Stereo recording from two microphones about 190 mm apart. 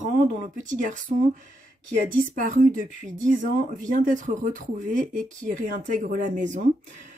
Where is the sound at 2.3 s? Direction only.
45° right (ahead or behind).